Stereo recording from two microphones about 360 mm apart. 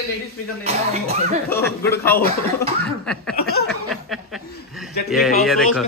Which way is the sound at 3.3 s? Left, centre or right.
Left.